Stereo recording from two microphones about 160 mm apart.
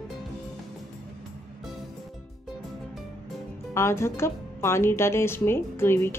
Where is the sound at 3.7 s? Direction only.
15° left (ahead or behind).